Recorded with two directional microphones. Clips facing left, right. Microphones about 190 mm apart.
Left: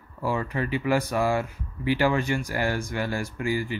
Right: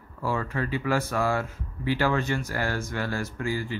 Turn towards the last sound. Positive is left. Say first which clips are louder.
# left 2 dB
turn(degrees=15)  # may be behind; listen again after turning